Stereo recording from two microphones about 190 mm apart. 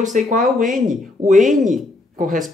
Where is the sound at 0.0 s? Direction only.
40° right (ahead or behind).